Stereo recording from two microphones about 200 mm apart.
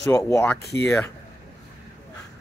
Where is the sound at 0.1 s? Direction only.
15° left (ahead or behind).